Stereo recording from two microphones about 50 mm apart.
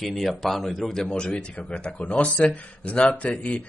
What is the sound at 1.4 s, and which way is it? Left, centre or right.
Speech, left.